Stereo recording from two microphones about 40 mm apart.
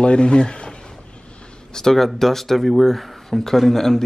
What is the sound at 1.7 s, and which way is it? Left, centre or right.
Speech, centre.